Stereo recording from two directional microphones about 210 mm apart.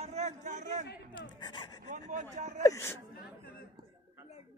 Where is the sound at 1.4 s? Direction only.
20° left (ahead or behind).